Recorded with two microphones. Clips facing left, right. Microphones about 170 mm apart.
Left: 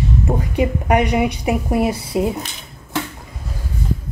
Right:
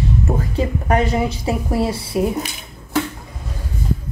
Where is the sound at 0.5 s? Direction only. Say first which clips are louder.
Left 3 dB; 15° left (ahead or behind).